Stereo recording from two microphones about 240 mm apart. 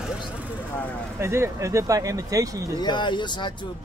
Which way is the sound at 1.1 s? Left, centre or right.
Centre.